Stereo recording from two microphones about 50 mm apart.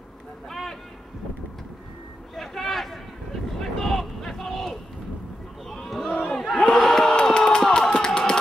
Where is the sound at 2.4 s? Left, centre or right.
Centre.